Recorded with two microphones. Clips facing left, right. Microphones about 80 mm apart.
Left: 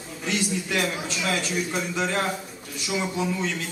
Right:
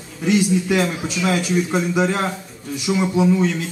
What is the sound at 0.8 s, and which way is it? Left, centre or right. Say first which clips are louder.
A man's voice: right 6 dB; centre.